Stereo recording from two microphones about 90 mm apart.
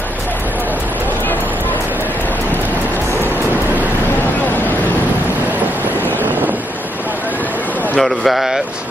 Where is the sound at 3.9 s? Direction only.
20° left (ahead or behind).